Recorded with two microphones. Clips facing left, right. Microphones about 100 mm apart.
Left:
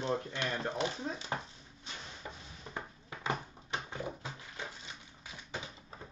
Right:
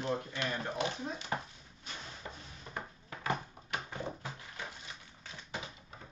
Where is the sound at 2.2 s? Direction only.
10° left (ahead or behind).